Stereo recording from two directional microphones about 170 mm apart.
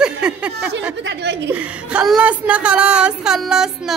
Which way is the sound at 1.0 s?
90° right.